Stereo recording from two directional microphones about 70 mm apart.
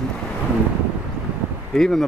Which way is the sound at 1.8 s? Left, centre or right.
Centre.